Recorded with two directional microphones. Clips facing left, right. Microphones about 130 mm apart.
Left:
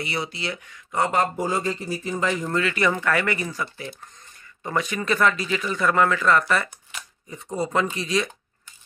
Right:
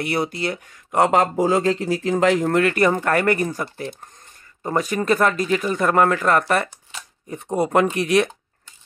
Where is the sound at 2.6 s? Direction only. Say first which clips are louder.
Right 5 dB; 50° right (ahead or behind).